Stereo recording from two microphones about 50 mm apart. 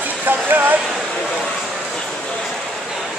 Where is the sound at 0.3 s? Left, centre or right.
Right.